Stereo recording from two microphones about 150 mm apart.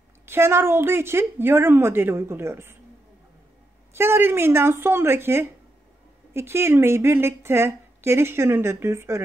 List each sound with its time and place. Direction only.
0.2 s a woman's voice: 15° right (ahead or behind)
3.9 s a woman's voice: 15° right (ahead or behind)